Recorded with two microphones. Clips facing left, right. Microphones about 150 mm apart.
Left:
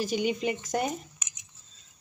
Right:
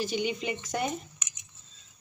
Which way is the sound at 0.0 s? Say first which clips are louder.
Left 3 dB; 45° left (ahead or behind).